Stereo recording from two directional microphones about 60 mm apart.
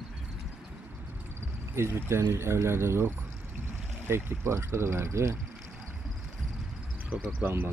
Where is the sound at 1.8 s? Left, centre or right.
Right.